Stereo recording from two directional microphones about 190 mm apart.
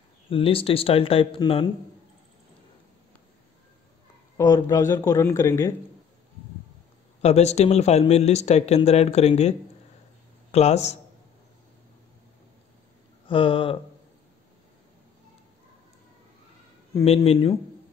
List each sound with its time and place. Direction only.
0.3 s speech: 30° left (ahead or behind)
4.4 s speech: 20° left (ahead or behind)
7.2 s speech: 35° left (ahead or behind)
13.3 s speech: 30° left (ahead or behind)
17.0 s speech: 30° left (ahead or behind)